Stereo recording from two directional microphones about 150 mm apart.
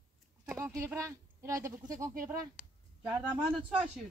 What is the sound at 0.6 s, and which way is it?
Speech, 20° right (ahead or behind).